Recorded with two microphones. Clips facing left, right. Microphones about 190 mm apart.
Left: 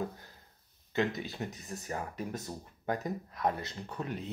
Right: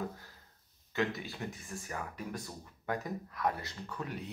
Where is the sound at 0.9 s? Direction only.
20° left (ahead or behind).